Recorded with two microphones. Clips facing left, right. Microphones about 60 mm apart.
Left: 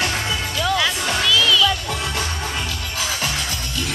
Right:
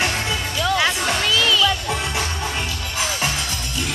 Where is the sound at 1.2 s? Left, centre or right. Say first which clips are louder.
Left 2 dB; right.